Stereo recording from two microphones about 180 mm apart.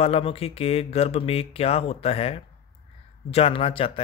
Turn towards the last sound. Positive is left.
turn(degrees=30)  # may be behind; listen again after turning